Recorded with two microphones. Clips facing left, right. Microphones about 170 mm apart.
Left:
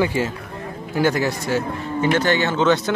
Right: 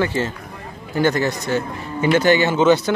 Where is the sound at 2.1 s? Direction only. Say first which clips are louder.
Right 6 dB; 10° right (ahead or behind).